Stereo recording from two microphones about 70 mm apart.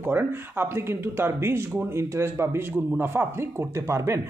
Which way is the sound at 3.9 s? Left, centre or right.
Right.